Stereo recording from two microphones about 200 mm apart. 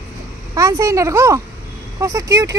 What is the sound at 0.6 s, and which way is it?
Speech, 15° right (ahead or behind).